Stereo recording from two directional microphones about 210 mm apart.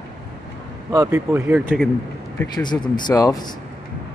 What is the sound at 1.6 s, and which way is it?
Speech, 5° left (ahead or behind).